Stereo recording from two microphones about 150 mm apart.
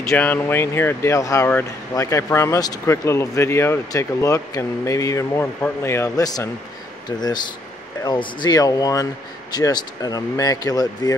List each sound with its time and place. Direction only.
0.1 s speech: 10° left (ahead or behind)